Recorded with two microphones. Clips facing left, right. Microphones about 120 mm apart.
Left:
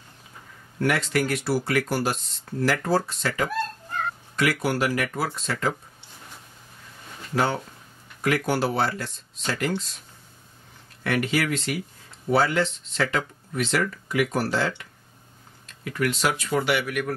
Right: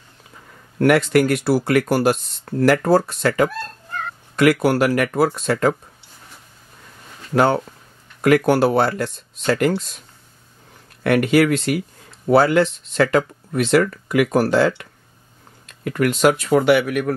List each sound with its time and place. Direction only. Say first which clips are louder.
0.7 s speech: right 9 dB; 60° right (ahead or behind)
7.3 s speech: right 8 dB; 55° right (ahead or behind)
11.1 s speech: right 9 dB; 60° right (ahead or behind)